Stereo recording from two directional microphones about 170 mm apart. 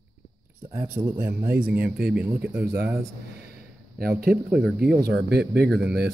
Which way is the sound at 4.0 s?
65° right (ahead or behind).